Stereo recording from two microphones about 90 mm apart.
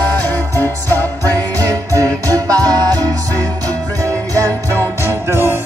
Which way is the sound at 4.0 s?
40° right (ahead or behind).